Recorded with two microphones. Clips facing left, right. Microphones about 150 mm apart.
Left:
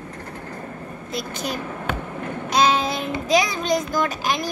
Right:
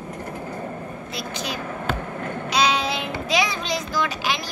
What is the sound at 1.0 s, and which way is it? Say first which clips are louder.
Speech: left 4 dB; 50° left (ahead or behind).